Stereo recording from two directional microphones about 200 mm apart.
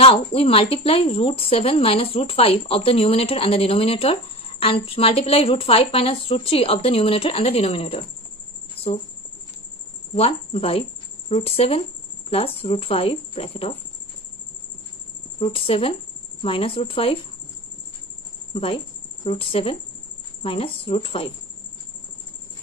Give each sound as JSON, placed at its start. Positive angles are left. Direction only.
{"t": 0.0, "sound": "speech", "side_deg": 30}
{"t": 10.1, "sound": "speech", "side_deg": 30}
{"t": 15.3, "sound": "speech", "side_deg": 25}
{"t": 18.5, "sound": "speech", "side_deg": 25}